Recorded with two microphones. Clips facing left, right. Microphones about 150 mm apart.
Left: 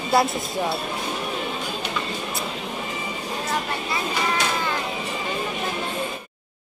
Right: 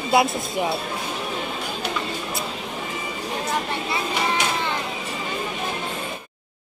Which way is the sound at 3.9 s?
25° right (ahead or behind).